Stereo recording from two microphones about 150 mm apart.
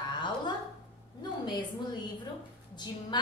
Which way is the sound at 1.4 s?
30° left (ahead or behind).